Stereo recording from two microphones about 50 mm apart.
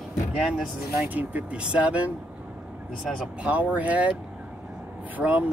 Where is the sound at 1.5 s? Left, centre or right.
Right.